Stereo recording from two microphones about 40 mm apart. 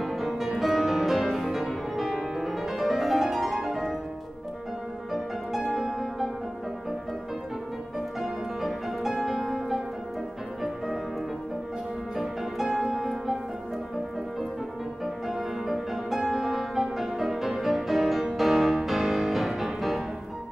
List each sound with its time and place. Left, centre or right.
0.0 s music: centre
5.7 s music: centre
8.2 s music: centre
12.2 s music: centre
15.2 s music: centre